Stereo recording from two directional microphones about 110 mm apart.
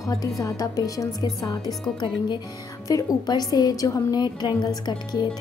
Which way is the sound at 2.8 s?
35° left (ahead or behind).